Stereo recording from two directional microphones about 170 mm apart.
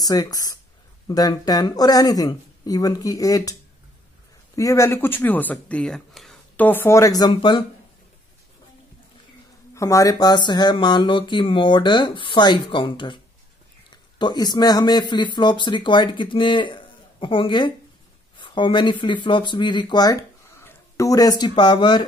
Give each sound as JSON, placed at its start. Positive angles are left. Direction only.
{"t": 0.0, "sound": "speech", "side_deg": 20}
{"t": 4.6, "sound": "speech", "side_deg": 20}
{"t": 9.8, "sound": "speech", "side_deg": 20}